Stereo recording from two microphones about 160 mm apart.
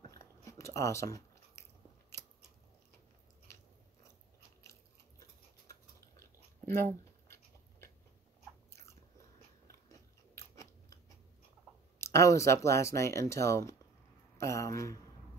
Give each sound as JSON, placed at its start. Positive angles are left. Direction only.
{"t": 0.1, "sound": "chewing", "side_deg": 20}
{"t": 5.7, "sound": "a sound", "side_deg": 20}
{"t": 9.8, "sound": "scissors", "side_deg": 20}
{"t": 12.0, "sound": "speech", "side_deg": 20}